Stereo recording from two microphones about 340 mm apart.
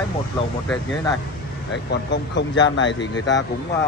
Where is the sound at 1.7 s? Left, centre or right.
Left.